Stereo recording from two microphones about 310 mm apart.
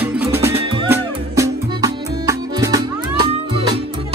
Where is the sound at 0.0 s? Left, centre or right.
Centre.